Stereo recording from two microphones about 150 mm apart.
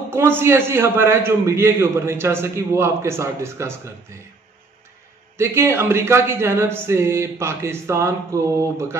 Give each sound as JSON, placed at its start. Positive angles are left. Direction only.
{"t": 0.1, "sound": "a man's voice", "side_deg": -15}
{"t": 5.4, "sound": "a man's voice", "side_deg": -15}